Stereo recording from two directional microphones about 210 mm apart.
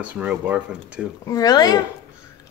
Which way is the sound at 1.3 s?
20° left (ahead or behind).